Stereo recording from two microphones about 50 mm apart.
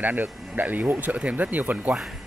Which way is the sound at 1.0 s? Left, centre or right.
Right.